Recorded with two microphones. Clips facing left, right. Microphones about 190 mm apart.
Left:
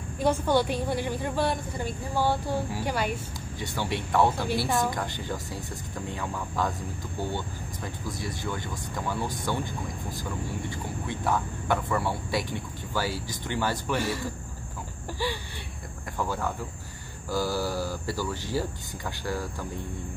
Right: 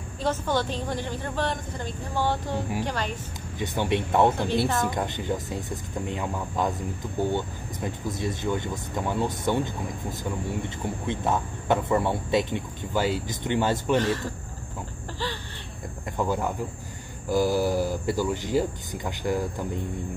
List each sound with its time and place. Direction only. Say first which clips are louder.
0.2 s a woman's voice: left 2 dB; 10° left (ahead or behind)
3.5 s speech: right 6 dB; 20° right (ahead or behind)
13.9 s a woman's voice: right 5 dB; 10° left (ahead or behind)
16.2 s speech: right 4 dB; 20° right (ahead or behind)